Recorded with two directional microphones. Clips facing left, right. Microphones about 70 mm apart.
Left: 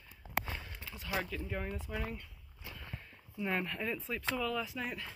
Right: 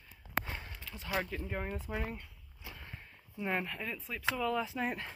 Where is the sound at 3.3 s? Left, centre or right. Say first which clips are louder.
Even; centre.